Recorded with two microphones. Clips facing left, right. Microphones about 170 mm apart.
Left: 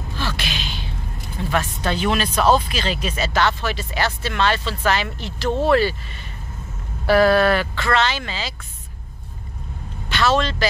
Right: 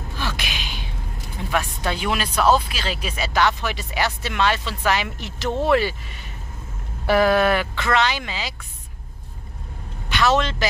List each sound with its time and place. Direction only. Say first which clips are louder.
0.2 s a sound: left 2 dB; 15° right (ahead or behind)
1.5 s speech: left 1 dB; 10° right (ahead or behind)
7.1 s speech: left 2 dB; 15° right (ahead or behind)
10.0 s a man's voice: even; 15° right (ahead or behind)